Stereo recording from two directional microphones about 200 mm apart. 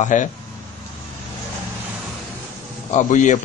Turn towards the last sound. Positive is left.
turn(degrees=40)  # may be behind; listen again after turning